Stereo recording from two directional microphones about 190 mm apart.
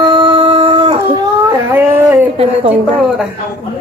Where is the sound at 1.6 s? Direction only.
10° right (ahead or behind).